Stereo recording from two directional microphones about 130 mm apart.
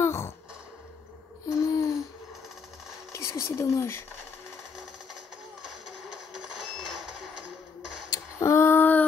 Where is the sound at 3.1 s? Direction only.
20° left (ahead or behind).